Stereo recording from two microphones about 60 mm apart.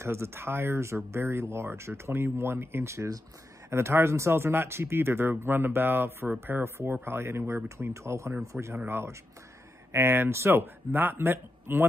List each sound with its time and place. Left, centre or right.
0.0 s a man's voice: right